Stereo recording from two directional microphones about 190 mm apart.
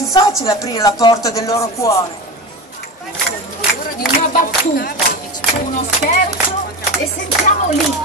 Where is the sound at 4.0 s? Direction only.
50° left (ahead or behind).